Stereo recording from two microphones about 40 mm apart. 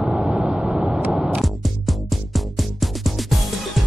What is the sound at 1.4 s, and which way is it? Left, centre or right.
Music, centre.